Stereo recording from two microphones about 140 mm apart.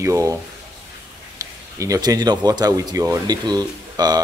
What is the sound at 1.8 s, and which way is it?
Speech, 25° right (ahead or behind).